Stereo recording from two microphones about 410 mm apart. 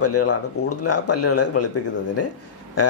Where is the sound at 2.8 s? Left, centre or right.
Left.